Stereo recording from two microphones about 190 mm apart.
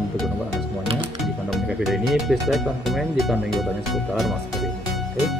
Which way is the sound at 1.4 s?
Centre (ahead or behind).